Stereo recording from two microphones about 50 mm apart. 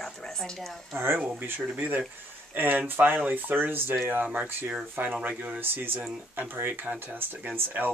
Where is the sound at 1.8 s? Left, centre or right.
Right.